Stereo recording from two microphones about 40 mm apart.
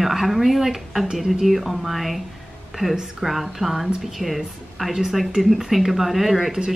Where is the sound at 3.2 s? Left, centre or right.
Centre.